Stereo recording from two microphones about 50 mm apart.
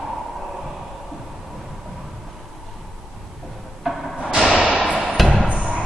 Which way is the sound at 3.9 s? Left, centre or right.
Centre.